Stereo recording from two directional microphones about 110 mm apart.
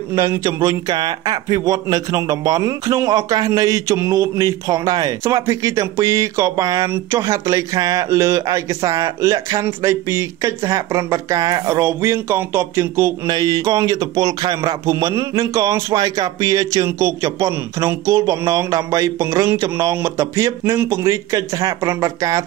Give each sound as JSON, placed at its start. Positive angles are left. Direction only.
{"t": 0.1, "sound": "a man's voice", "side_deg": -30}
{"t": 13.3, "sound": "speech", "side_deg": -35}